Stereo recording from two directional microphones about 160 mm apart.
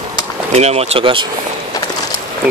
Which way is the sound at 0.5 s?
40° right (ahead or behind).